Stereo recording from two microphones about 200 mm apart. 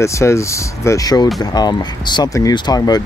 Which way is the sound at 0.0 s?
15° left (ahead or behind).